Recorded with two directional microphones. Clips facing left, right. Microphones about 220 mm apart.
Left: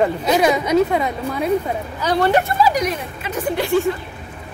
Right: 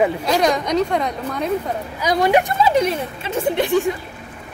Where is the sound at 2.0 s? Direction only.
10° right (ahead or behind).